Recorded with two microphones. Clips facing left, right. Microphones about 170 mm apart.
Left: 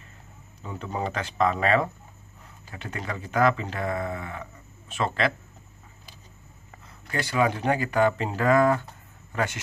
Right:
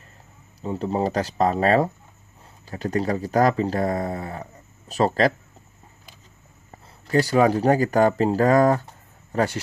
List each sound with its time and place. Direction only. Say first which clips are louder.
0.6 s speech: right 8 dB; 35° right (ahead or behind)
7.1 s speech: right 7 dB; 40° right (ahead or behind)